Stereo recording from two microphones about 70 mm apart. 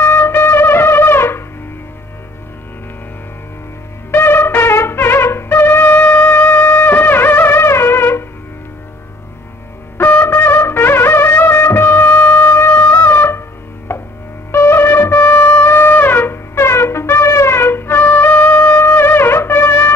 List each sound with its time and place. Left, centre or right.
0.0 s wind instrument: left
4.1 s music: left
9.9 s music: left
14.5 s shofar: left